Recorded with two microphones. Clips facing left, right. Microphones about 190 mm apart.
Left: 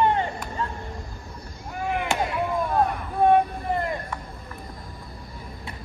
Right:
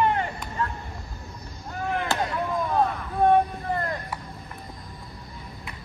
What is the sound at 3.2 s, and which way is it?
Vehicle, 15° left (ahead or behind).